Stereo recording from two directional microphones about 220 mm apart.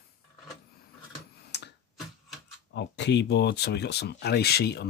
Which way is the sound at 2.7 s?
50° left (ahead or behind).